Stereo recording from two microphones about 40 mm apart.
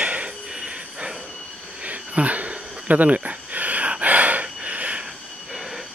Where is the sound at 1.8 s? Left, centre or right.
Right.